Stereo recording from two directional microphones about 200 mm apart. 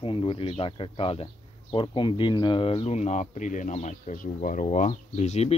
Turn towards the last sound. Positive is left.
turn(degrees=35)  # may be behind; listen again after turning